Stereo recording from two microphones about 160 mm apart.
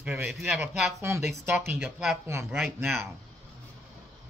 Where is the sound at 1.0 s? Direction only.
15° right (ahead or behind).